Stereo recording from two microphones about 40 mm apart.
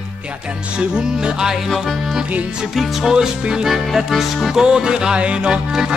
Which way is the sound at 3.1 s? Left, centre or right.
Centre.